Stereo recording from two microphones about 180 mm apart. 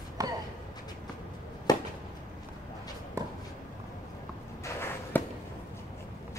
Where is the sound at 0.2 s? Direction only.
20° right (ahead or behind).